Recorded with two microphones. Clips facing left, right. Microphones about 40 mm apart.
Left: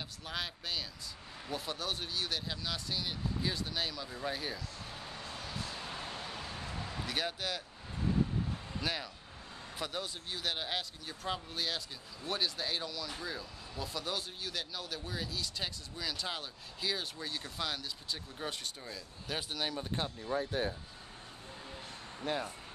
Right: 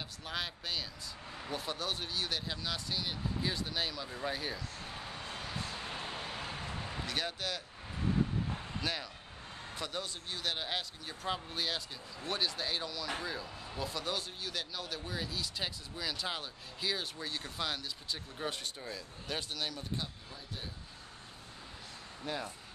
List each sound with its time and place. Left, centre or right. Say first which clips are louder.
0.2 s speech: right 1 dB; centre
5.4 s a sound: right 1 dB; centre
6.4 s a sound: right 1 dB; right
7.1 s speech: left 1 dB; centre
8.8 s speech: left 1 dB; centre
20.0 s speech: left 9 dB; left
22.2 s speech: left 3 dB; left